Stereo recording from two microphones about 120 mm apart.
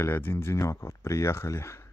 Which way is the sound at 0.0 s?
20° left (ahead or behind).